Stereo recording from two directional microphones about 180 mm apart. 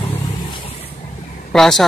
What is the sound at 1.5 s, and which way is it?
Speech, centre (ahead or behind).